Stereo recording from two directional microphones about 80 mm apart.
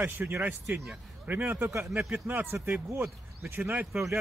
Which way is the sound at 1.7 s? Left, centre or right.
Right.